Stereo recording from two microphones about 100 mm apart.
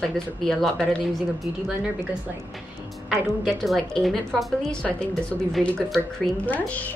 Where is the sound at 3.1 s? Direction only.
Centre (ahead or behind).